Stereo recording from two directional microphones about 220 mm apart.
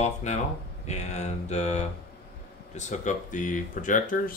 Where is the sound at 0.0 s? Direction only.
30° left (ahead or behind).